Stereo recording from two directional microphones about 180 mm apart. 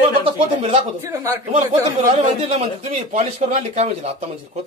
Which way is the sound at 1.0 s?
15° right (ahead or behind).